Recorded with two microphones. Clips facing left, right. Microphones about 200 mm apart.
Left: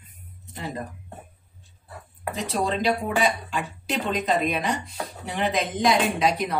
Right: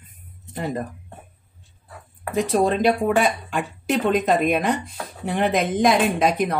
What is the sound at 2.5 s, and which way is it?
A woman's voice, 50° right (ahead or behind).